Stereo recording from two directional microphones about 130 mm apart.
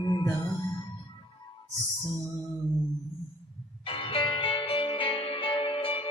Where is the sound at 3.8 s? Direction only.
45° left (ahead or behind).